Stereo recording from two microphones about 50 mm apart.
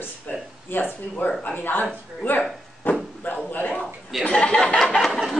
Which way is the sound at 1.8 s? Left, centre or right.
Left.